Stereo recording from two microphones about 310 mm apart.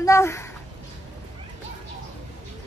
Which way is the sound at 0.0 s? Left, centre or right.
Centre.